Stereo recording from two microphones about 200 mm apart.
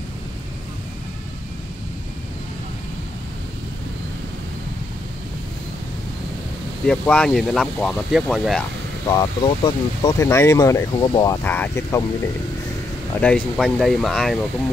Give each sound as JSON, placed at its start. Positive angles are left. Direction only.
{"t": 6.9, "sound": "speech", "side_deg": 5}
{"t": 9.0, "sound": "speech", "side_deg": 20}
{"t": 13.2, "sound": "speech", "side_deg": 5}